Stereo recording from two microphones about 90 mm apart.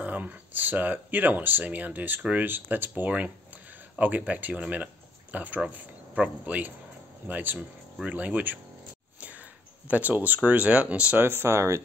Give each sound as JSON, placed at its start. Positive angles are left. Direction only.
{"t": 0.0, "sound": "speech", "side_deg": -20}